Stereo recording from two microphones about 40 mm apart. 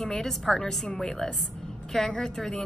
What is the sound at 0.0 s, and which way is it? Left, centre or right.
A woman's voice, centre.